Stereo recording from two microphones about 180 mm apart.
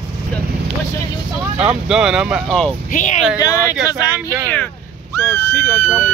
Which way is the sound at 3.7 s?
5° right (ahead or behind).